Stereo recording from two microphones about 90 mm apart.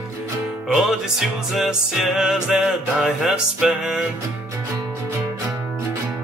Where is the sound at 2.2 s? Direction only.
5° right (ahead or behind).